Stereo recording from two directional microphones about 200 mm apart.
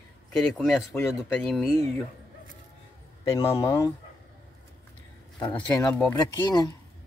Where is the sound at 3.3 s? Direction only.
15° left (ahead or behind).